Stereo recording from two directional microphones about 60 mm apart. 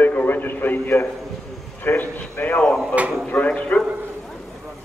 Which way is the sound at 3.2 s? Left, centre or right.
Left.